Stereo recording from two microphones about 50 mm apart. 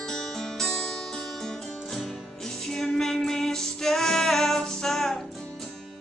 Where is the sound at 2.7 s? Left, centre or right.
Centre.